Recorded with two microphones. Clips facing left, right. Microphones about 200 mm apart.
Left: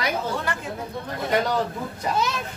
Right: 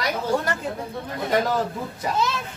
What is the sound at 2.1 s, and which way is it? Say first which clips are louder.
Speech: right 1 dB; 15° left (ahead or behind).